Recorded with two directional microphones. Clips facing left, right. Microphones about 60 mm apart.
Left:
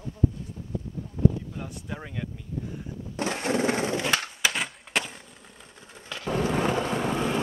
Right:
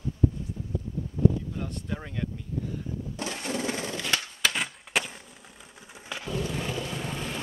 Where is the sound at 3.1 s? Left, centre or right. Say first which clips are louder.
Left 7 dB; left.